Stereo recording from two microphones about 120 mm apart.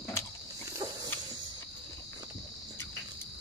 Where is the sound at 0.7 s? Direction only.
30° right (ahead or behind).